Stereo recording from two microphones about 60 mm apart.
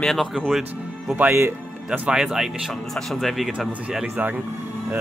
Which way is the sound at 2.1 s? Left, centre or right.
Centre.